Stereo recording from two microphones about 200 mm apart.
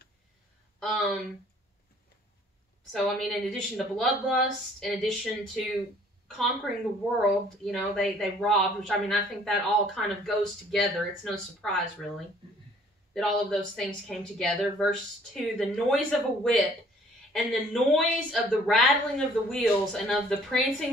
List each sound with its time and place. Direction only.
0.7 s a sound: centre (ahead or behind)
2.9 s a woman's voice: centre (ahead or behind)
13.1 s speech: centre (ahead or behind)